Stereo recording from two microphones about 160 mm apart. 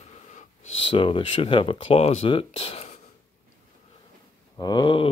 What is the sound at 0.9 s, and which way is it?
Speech, 35° left (ahead or behind).